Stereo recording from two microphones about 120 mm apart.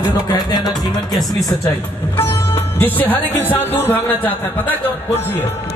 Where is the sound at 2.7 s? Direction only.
15° left (ahead or behind).